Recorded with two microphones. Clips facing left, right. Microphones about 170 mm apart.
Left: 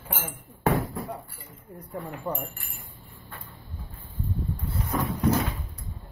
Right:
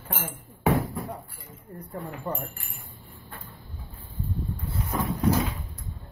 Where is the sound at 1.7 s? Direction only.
Centre (ahead or behind).